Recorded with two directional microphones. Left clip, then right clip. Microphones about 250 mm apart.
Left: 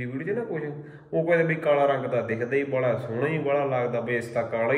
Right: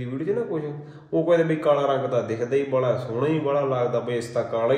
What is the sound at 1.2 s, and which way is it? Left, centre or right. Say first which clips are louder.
A man's voice: right 3 dB; centre.